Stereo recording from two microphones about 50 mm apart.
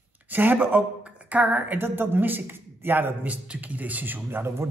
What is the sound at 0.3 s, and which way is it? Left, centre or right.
A man's voice, right.